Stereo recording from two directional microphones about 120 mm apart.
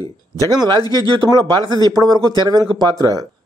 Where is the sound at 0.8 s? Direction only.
30° left (ahead or behind).